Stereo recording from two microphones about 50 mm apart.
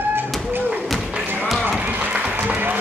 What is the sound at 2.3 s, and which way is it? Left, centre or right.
Applause, right.